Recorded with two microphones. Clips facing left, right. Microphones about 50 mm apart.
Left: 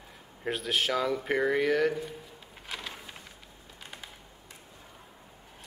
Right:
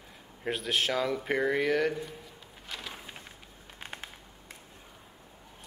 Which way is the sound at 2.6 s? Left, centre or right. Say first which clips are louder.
Left 2 dB; centre.